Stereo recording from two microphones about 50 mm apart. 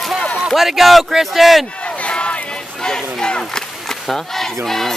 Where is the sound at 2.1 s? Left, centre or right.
Left.